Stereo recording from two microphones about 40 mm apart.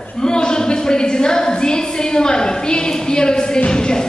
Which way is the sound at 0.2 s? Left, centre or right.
Centre.